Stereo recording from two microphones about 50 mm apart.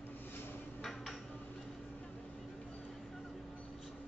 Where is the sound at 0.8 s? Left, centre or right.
Centre.